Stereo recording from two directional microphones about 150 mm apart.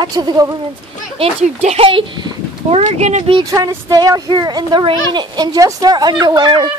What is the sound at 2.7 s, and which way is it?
Speech, 50° right (ahead or behind).